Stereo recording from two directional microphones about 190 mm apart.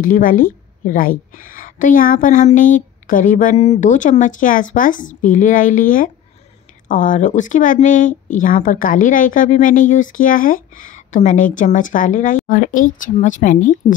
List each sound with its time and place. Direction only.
0.0 s a woman's voice: 45° left (ahead or behind)